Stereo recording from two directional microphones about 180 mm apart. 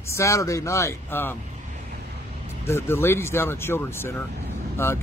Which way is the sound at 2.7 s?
15° left (ahead or behind).